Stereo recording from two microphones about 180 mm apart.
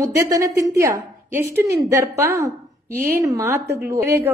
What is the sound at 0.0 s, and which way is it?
A woman's voice, 20° right (ahead or behind).